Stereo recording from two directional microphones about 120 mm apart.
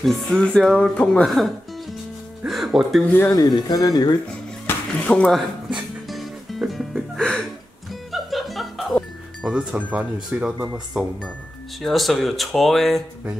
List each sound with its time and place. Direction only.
0.0 s speech: 5° left (ahead or behind)
3.1 s speech: 15° left (ahead or behind)
3.3 s speech: 35° left (ahead or behind)
4.6 s speech: 10° left (ahead or behind)
6.0 s music: centre (ahead or behind)
10.3 s speech: 10° right (ahead or behind)